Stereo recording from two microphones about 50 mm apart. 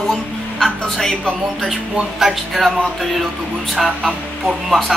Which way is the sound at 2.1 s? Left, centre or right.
Centre.